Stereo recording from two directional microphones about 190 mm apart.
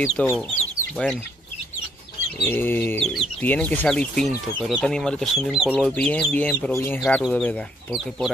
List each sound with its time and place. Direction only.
0.3 s chicken: 15° left (ahead or behind)
0.9 s speech: 5° left (ahead or behind)
2.4 s speech: 10° left (ahead or behind)
7.0 s speech: centre (ahead or behind)